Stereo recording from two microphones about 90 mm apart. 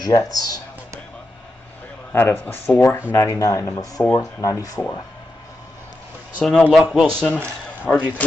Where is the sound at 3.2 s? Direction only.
40° left (ahead or behind).